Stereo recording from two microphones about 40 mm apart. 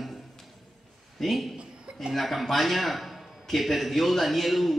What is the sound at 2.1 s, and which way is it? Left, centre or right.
A man's voice, centre.